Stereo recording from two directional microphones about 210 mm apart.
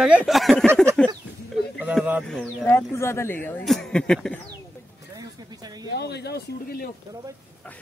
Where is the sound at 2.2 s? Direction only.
5° left (ahead or behind).